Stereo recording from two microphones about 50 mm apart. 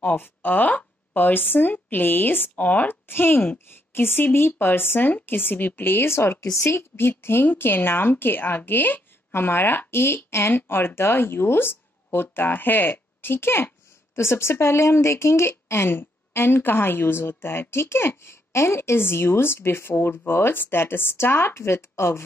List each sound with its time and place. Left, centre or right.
0.0 s speech: left
3.1 s a woman's voice: left
14.1 s a woman's voice: left